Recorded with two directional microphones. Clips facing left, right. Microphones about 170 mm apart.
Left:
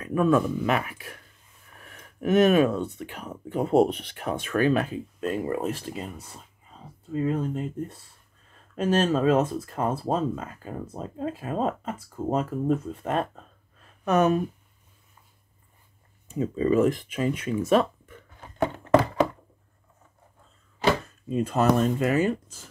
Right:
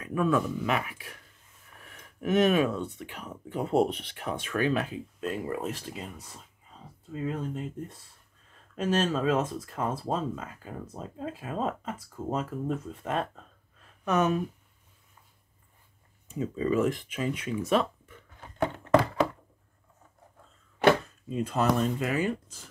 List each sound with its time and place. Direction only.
0.0 s speech: 45° left (ahead or behind)
7.1 s speech: 50° left (ahead or behind)
8.7 s speech: 50° left (ahead or behind)
16.3 s speech: 45° left (ahead or behind)
20.8 s chopping: 60° right (ahead or behind)
21.3 s speech: 50° left (ahead or behind)